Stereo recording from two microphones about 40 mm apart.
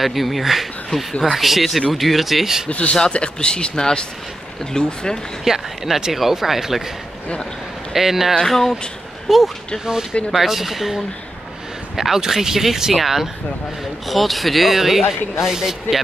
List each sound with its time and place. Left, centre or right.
0.0 s speech: centre
3.1 s speech: left
5.4 s speech: centre
7.9 s speech: centre
8.4 s speech: centre
9.3 s speech: centre